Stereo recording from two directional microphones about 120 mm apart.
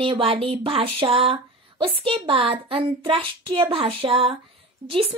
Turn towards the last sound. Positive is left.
turn(degrees=-50)  # may be behind; listen again after turning